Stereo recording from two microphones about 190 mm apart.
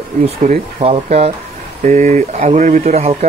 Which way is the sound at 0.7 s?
35° right (ahead or behind).